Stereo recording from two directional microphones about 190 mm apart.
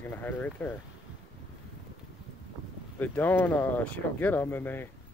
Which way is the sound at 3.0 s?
10° left (ahead or behind).